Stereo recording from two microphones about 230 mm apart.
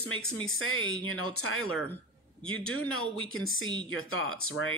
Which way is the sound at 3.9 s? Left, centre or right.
Left.